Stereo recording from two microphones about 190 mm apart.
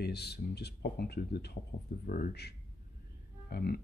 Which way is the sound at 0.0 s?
60° left (ahead or behind).